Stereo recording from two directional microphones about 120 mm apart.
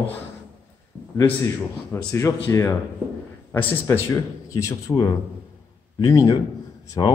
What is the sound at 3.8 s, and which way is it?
A man's voice, 30° left (ahead or behind).